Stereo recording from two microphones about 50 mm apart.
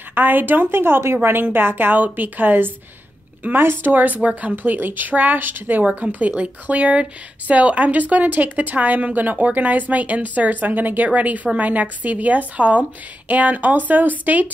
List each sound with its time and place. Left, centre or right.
0.1 s a woman's voice: right
4.7 s speech: right